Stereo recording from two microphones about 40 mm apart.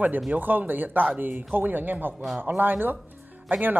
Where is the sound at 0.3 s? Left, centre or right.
Right.